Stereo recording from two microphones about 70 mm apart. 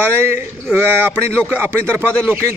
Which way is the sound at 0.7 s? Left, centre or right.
Right.